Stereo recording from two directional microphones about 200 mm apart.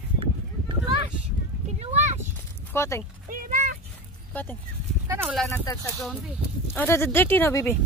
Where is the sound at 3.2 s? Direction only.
45° right (ahead or behind).